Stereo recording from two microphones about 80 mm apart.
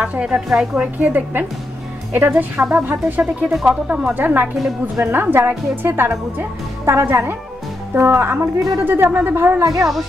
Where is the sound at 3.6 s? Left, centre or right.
Centre.